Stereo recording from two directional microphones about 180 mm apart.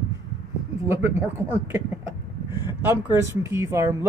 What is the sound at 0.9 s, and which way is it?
Speech, 15° right (ahead or behind).